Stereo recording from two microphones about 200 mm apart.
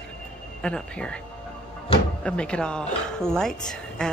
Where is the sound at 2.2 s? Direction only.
5° left (ahead or behind).